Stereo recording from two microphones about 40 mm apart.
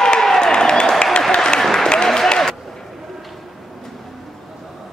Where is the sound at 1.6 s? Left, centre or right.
Centre.